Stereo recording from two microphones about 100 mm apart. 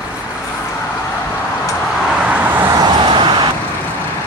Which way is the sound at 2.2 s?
20° right (ahead or behind).